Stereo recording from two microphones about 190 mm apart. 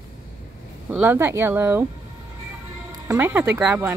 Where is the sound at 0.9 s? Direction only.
10° right (ahead or behind).